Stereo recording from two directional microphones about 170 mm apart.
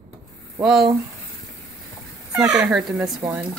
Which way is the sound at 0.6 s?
5° right (ahead or behind).